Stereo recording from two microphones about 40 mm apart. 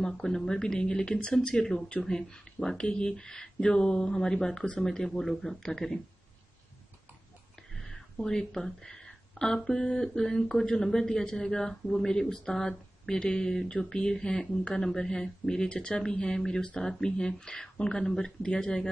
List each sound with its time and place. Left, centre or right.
0.0 s speech: centre
7.7 s speech: centre
16.3 s speech: centre